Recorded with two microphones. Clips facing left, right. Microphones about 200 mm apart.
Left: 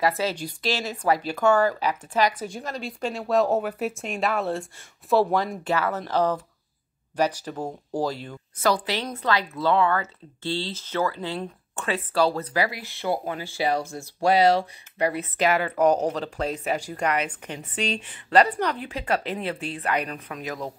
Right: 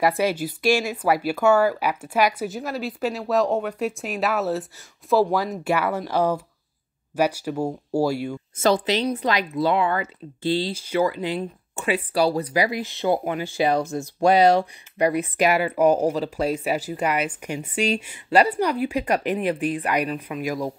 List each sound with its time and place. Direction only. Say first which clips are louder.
0.2 s speech: right 5 dB; 10° right (ahead or behind)
8.5 s speech: right 4 dB; 25° right (ahead or behind)